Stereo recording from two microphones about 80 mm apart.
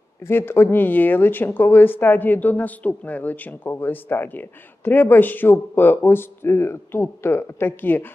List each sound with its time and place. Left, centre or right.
0.2 s speech: left